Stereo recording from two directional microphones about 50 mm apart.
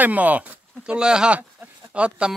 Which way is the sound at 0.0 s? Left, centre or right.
Right.